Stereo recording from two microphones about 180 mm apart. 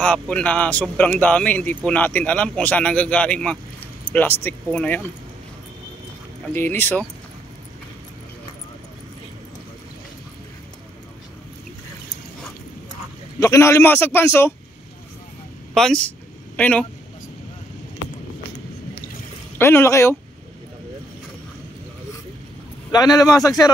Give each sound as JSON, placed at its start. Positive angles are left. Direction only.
{"t": 0.0, "sound": "speech", "side_deg": 5}
{"t": 6.5, "sound": "speech", "side_deg": 10}
{"t": 13.4, "sound": "speech", "side_deg": 15}
{"t": 15.7, "sound": "speech", "side_deg": 5}
{"t": 19.6, "sound": "speech", "side_deg": 15}
{"t": 22.8, "sound": "a man's voice", "side_deg": 20}